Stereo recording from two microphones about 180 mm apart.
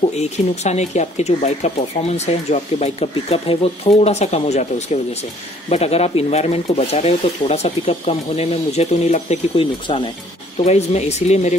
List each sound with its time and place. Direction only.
0.1 s speech: 40° left (ahead or behind)